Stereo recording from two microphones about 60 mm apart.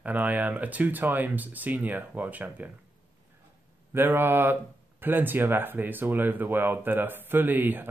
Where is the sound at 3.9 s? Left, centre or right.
Right.